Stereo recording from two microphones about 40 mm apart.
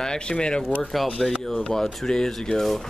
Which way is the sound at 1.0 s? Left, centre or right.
Centre.